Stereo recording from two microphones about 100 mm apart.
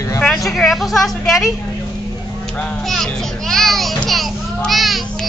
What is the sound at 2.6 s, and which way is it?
Children playing, 5° left (ahead or behind).